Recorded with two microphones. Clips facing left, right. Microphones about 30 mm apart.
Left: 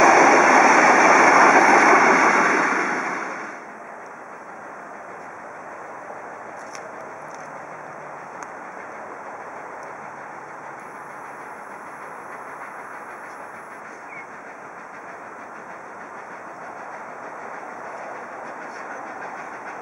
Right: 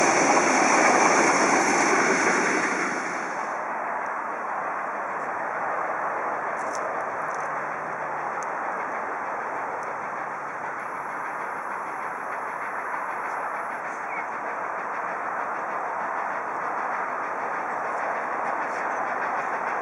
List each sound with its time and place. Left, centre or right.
0.0 s vehicle: left